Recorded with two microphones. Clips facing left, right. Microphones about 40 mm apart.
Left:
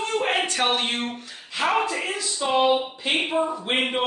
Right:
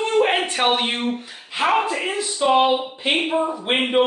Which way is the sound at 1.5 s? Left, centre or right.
Centre.